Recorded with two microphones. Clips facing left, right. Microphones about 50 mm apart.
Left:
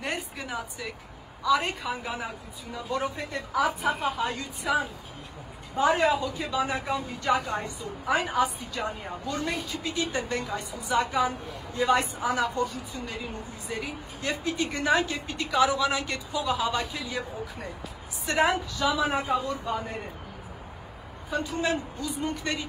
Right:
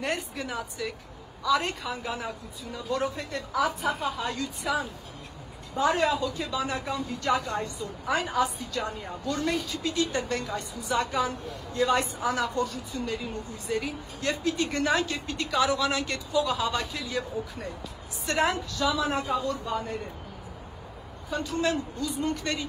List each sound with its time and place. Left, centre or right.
0.0 s a sound: centre
1.4 s a woman's voice: centre
6.0 s a woman's voice: left
21.3 s a woman's voice: left